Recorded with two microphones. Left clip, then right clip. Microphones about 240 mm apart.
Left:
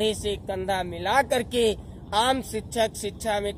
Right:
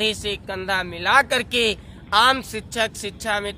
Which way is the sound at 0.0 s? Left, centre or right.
Right.